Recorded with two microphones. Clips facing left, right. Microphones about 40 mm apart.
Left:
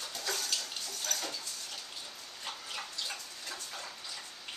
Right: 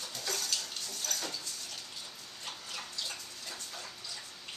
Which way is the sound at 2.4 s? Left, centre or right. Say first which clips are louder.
Left 2 dB; centre.